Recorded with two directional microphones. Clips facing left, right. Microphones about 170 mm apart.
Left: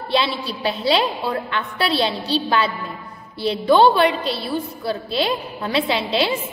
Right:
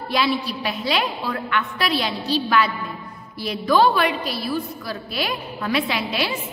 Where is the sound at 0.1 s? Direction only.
30° left (ahead or behind).